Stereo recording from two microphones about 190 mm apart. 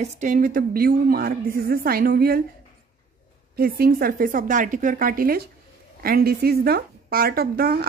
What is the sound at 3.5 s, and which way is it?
Speech, 50° right (ahead or behind).